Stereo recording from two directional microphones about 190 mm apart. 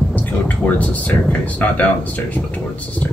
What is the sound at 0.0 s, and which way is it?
Speech, 5° left (ahead or behind).